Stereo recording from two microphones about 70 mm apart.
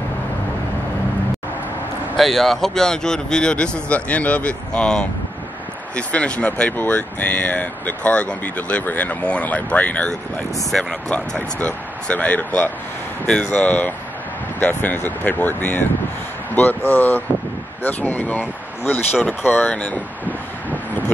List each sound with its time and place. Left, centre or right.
2.1 s speech: centre
10.7 s speech: centre; by 19.7 s left
19.7 s speech: centre